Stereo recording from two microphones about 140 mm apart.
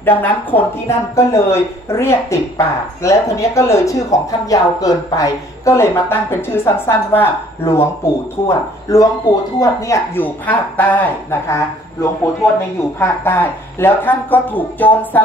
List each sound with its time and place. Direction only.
0.0 s speech: 15° left (ahead or behind)